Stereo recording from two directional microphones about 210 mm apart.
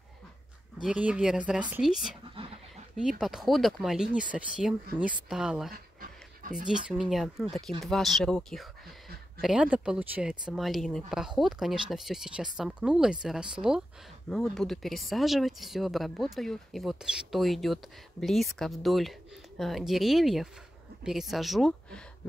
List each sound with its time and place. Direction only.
0.8 s speech: 5° right (ahead or behind)
5.7 s dog: 40° right (ahead or behind)
6.7 s speech: 5° right (ahead or behind)